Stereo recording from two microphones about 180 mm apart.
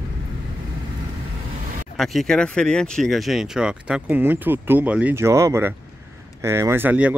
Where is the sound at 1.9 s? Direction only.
Centre (ahead or behind).